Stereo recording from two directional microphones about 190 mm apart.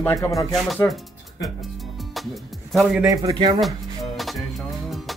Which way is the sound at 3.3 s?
20° right (ahead or behind).